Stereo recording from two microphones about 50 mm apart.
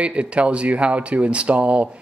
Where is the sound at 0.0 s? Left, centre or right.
Right.